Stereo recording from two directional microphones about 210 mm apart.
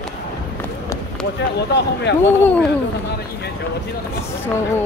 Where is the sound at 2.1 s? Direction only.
55° left (ahead or behind).